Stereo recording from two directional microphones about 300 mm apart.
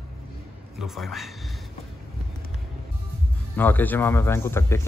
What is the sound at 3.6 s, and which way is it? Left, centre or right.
Speech, centre.